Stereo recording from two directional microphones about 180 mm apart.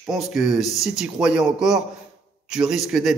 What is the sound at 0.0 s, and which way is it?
A man's voice, centre (ahead or behind).